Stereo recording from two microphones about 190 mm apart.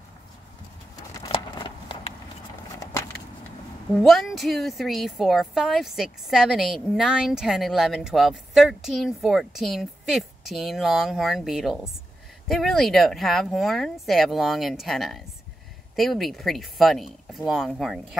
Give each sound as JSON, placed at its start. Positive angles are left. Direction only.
{"t": 0.9, "sound": "vehicle", "side_deg": 20}
{"t": 3.9, "sound": "a woman's voice", "side_deg": 0}